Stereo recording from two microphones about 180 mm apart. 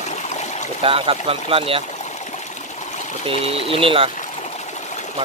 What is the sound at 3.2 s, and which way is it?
Speech, 30° right (ahead or behind).